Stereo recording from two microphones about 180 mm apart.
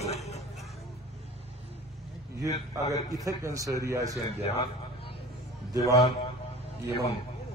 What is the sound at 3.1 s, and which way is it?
Speech, 15° right (ahead or behind).